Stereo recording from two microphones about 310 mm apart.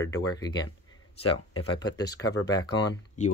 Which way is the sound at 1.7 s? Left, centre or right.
Centre.